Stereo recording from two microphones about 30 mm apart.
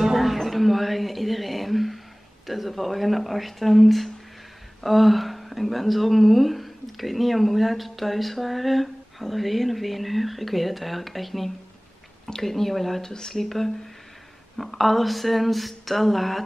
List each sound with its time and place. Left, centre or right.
0.0 s a sound: centre
2.4 s speech: centre
12.3 s speech: centre
13.0 s speech: centre
13.4 s speech: centre